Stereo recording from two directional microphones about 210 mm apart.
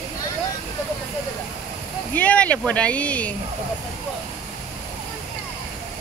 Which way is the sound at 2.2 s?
5° left (ahead or behind).